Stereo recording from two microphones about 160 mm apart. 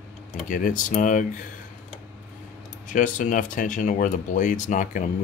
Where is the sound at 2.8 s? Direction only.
55° left (ahead or behind).